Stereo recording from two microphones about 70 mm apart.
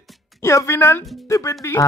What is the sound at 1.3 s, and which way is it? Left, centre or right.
Speech, left.